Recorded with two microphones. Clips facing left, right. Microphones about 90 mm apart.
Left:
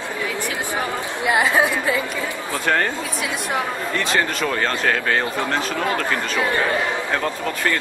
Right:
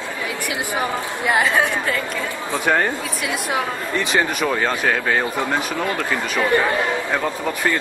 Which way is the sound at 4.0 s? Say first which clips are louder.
Right 2 dB; 15° right (ahead or behind).